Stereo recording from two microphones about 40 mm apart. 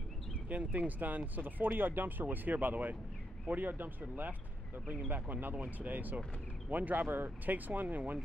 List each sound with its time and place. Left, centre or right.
0.5 s speech: right